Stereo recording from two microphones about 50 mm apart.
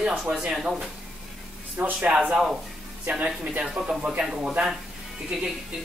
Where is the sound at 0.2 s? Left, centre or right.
Centre.